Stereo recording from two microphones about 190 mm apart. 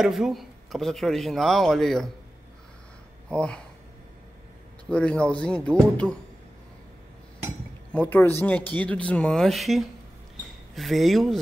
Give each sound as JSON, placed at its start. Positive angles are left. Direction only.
{"t": 0.0, "sound": "speech", "side_deg": 0}
{"t": 3.3, "sound": "speech", "side_deg": 5}
{"t": 4.8, "sound": "speech", "side_deg": 5}
{"t": 7.9, "sound": "speech", "side_deg": 10}